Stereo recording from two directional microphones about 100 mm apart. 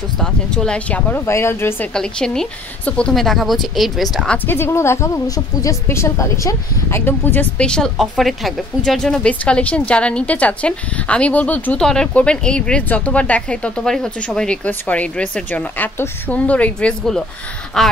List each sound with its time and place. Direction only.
0.2 s speech: 5° left (ahead or behind)
1.2 s a woman's voice: 25° left (ahead or behind)
2.0 s a woman's voice: 5° left (ahead or behind)
4.5 s a woman's voice: 25° left (ahead or behind)
7.5 s a woman's voice: 10° left (ahead or behind)